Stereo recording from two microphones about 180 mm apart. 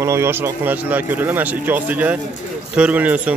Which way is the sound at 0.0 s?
15° right (ahead or behind).